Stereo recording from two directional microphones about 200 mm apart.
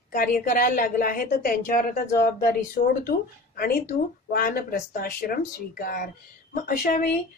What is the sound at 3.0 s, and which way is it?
A woman's voice, 45° left (ahead or behind).